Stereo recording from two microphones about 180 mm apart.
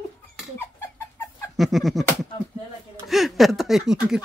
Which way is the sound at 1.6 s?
Centre (ahead or behind).